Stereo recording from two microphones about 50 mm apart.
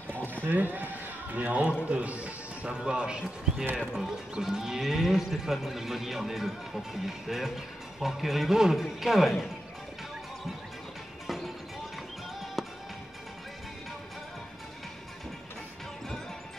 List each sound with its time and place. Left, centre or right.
0.1 s horse: right
1.3 s a man's voice: right; by 9.5 s centre
11.2 s music: centre
12.6 s music: centre